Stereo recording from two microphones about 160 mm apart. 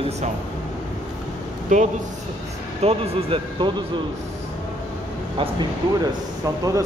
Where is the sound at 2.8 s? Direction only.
35° right (ahead or behind).